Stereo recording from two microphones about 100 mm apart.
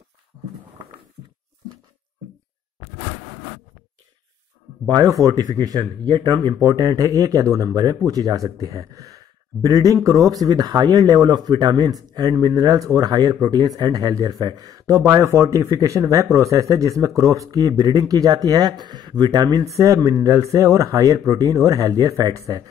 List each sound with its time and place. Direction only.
4.8 s speech: 40° right (ahead or behind)